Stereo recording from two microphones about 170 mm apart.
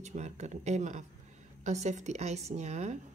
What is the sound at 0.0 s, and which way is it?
Speech, 45° right (ahead or behind).